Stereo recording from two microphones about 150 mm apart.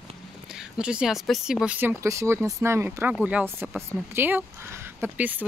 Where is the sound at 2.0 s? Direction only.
20° right (ahead or behind).